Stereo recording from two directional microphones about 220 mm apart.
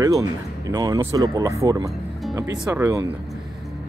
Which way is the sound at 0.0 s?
15° right (ahead or behind).